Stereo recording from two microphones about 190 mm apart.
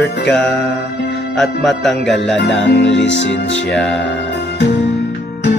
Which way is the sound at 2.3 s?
70° left (ahead or behind).